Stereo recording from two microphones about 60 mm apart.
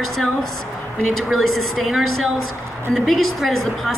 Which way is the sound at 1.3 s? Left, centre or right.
Centre.